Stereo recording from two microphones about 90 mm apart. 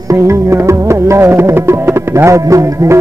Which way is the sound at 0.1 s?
30° right (ahead or behind).